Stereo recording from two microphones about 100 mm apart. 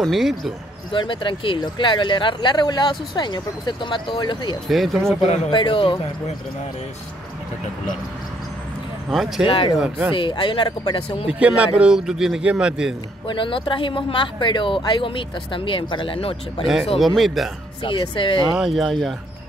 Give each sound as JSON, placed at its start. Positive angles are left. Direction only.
{"t": 0.0, "sound": "speech", "side_deg": 0}
{"t": 0.9, "sound": "speech", "side_deg": 55}
{"t": 4.6, "sound": "speech", "side_deg": 0}
{"t": 5.5, "sound": "speech", "side_deg": 55}
{"t": 9.1, "sound": "a man's voice", "side_deg": 0}
{"t": 10.1, "sound": "speech", "side_deg": 55}
{"t": 11.2, "sound": "a man's voice", "side_deg": -10}
{"t": 13.3, "sound": "speech", "side_deg": 60}
{"t": 17.0, "sound": "speech", "side_deg": 0}
{"t": 17.8, "sound": "speech", "side_deg": 55}
{"t": 18.5, "sound": "speech", "side_deg": 0}